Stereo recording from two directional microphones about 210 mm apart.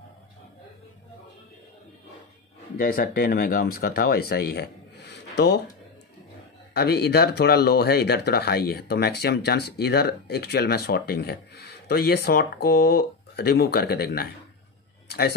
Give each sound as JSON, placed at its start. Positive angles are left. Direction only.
{"t": 2.8, "sound": "speech", "side_deg": 45}
{"t": 6.7, "sound": "speech", "side_deg": 50}